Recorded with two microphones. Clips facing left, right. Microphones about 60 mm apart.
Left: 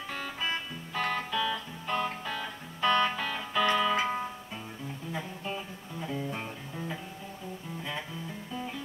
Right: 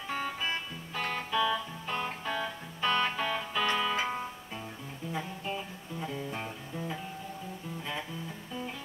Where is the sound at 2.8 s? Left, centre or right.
Centre.